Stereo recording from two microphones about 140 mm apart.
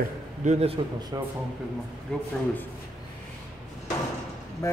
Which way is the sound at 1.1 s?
25° right (ahead or behind).